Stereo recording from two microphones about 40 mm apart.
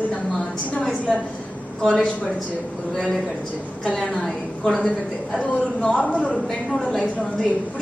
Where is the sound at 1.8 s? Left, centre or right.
Centre.